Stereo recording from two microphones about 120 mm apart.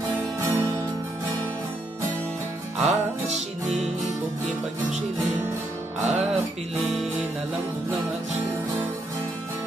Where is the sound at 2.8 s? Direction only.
75° right (ahead or behind).